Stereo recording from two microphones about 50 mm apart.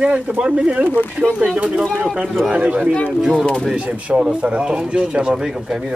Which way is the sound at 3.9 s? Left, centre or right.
Right.